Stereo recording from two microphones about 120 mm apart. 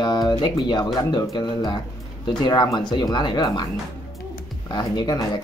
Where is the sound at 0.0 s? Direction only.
35° left (ahead or behind).